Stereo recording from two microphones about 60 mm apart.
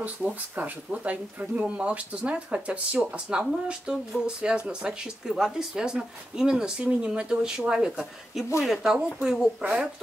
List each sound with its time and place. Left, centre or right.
0.0 s speech: right